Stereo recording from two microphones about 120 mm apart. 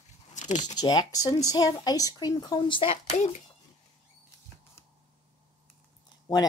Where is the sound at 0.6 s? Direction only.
35° left (ahead or behind).